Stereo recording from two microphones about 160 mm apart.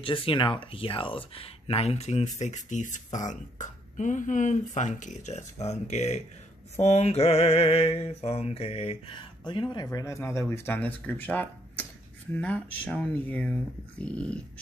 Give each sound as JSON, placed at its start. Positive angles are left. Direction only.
{"t": 0.0, "sound": "speech", "side_deg": 35}
{"t": 6.8, "sound": "mantra", "side_deg": 40}
{"t": 9.8, "sound": "speech", "side_deg": 20}